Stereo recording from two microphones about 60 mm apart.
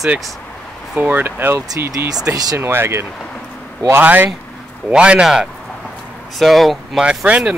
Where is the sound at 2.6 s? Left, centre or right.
Right.